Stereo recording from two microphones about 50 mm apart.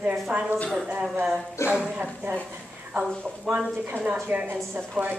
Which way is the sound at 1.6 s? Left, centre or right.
Left.